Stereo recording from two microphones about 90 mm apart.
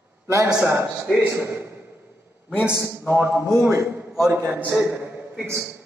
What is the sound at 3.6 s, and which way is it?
Speech, 35° right (ahead or behind).